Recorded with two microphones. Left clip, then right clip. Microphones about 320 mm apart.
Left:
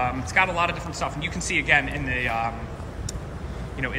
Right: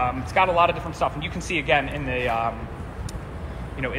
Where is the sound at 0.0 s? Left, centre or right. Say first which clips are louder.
Right 1 dB; centre.